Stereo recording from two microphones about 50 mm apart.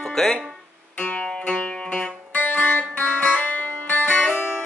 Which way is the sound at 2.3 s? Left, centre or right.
Left.